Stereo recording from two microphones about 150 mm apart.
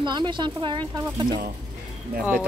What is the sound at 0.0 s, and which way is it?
Speech, 30° right (ahead or behind).